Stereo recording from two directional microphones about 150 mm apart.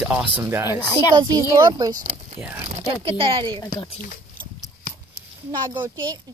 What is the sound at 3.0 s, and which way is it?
Speech, 35° right (ahead or behind).